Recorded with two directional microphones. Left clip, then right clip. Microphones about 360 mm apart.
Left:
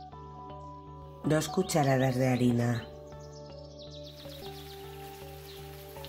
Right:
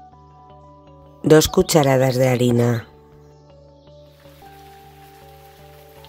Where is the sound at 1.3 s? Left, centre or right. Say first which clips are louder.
Right 16 dB; right.